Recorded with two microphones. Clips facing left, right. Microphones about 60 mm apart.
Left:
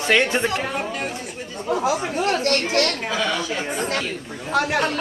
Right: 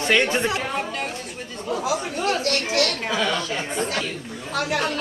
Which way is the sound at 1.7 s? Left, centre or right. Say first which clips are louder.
Left 3 dB; left.